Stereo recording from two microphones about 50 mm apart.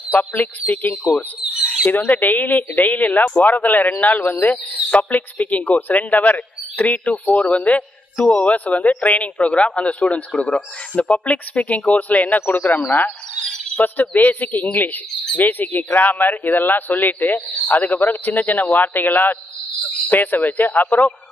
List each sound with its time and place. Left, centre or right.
0.4 s a man's voice: left
7.1 s speech: centre
7.5 s a man's voice: left
9.4 s a man's voice: centre; by 21.1 s left